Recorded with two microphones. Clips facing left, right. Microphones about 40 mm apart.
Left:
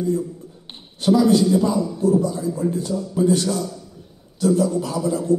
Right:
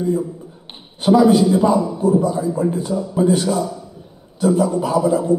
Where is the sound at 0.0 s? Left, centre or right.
Right.